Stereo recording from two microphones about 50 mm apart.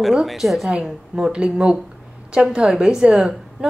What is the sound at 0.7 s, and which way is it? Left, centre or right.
A woman's voice, centre.